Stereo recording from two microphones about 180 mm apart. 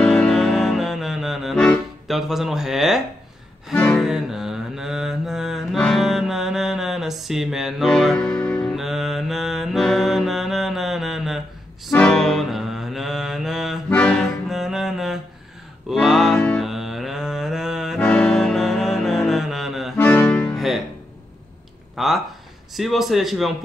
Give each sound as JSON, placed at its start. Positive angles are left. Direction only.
{"t": 0.0, "sound": "music", "side_deg": 5}
{"t": 3.7, "sound": "speech", "side_deg": 10}
{"t": 4.0, "sound": "mantra", "side_deg": 0}
{"t": 11.9, "sound": "music", "side_deg": 0}
{"t": 21.9, "sound": "a sound", "side_deg": 0}
{"t": 22.8, "sound": "a man's voice", "side_deg": 0}